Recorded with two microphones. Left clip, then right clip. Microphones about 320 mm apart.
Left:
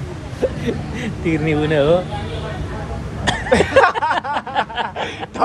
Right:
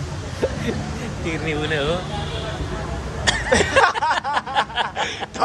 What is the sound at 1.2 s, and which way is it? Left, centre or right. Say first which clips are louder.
Speech: left 6 dB; centre.